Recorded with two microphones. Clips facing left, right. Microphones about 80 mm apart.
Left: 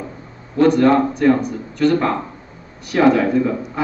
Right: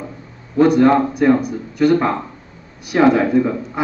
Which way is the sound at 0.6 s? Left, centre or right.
Centre.